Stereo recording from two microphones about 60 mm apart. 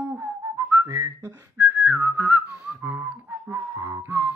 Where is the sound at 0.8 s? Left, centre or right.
Right.